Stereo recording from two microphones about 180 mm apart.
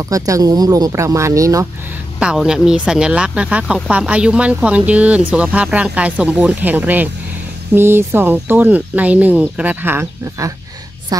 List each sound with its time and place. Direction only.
0.1 s speech: 20° right (ahead or behind)
2.1 s speech: 5° right (ahead or behind)